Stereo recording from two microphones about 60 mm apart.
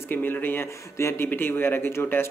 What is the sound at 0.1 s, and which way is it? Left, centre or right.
Speech, left.